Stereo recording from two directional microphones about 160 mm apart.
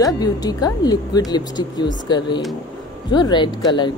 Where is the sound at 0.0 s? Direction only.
25° left (ahead or behind).